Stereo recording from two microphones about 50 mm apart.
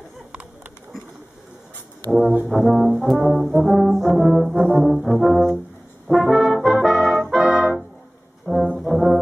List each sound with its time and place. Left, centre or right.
2.0 s brass instrument: centre
7.3 s music: centre
8.7 s brass instrument: centre